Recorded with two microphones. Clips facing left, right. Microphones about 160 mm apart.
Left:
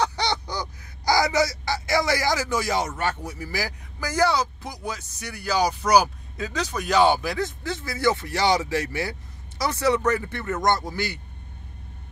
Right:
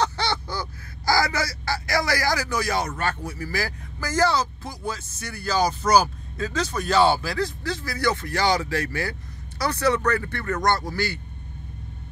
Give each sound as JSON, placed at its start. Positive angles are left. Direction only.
{"t": 0.0, "sound": "fowl", "side_deg": 15}
{"t": 3.0, "sound": "speech", "side_deg": 20}